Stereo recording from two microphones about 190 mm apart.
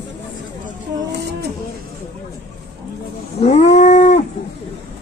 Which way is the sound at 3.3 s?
35° left (ahead or behind).